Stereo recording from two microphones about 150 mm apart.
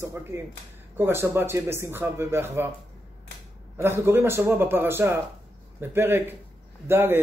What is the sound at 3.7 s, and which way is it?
Speech, 15° right (ahead or behind).